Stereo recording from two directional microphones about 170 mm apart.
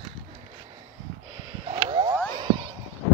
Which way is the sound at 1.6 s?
30° right (ahead or behind).